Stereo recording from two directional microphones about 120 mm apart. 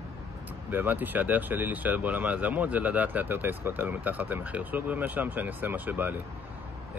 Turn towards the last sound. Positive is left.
turn(degrees=-15)  # may be behind; listen again after turning